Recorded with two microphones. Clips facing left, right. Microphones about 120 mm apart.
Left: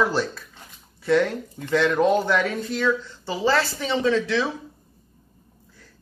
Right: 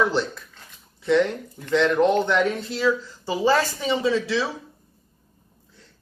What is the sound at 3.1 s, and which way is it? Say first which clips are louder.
Speech: right 2 dB; 15° right (ahead or behind).